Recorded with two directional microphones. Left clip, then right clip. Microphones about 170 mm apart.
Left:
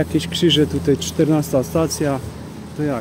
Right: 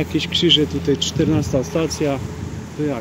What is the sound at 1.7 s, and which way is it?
Speech, 45° left (ahead or behind).